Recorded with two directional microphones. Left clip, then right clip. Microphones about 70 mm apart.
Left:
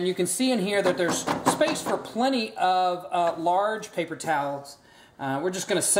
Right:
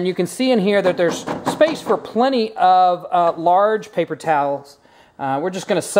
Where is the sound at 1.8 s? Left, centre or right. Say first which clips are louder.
Right 9 dB; right.